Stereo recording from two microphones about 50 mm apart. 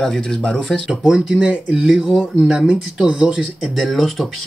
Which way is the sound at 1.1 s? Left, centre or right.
Centre.